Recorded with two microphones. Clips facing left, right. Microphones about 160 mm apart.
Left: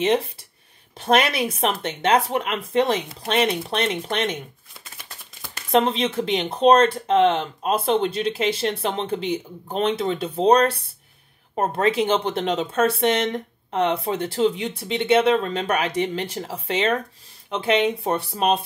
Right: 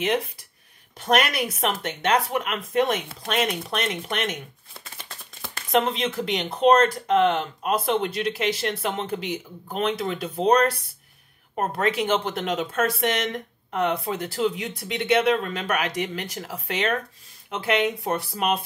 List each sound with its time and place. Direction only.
0.0 s speech: 30° left (ahead or behind)
5.7 s speech: 25° left (ahead or behind)